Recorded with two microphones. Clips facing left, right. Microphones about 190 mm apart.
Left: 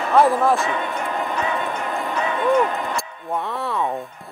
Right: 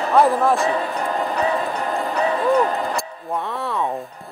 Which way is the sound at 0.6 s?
35° right (ahead or behind).